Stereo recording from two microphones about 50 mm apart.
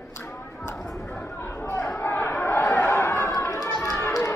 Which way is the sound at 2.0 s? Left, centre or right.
Left.